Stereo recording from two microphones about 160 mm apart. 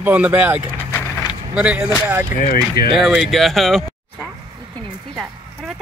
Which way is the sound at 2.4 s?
60° left (ahead or behind).